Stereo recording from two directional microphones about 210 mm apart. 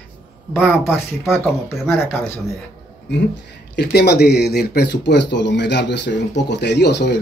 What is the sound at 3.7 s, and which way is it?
Speech, 50° left (ahead or behind).